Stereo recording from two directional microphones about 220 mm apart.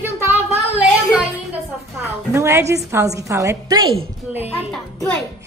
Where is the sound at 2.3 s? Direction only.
15° right (ahead or behind).